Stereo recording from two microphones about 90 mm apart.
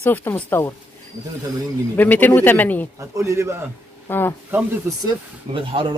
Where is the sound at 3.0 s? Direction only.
35° right (ahead or behind).